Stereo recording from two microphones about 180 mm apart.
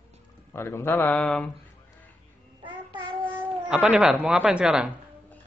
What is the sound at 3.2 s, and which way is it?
Speech, 10° right (ahead or behind).